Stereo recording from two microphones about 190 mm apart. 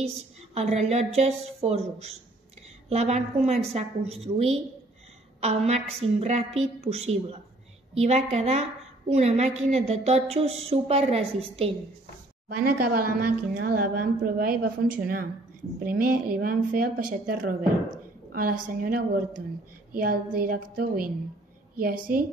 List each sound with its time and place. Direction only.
0.6 s a woman's voice: 35° right (ahead or behind)
12.4 s a woman's voice: 55° right (ahead or behind)